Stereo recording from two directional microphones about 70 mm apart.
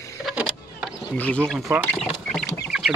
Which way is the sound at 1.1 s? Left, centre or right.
Centre.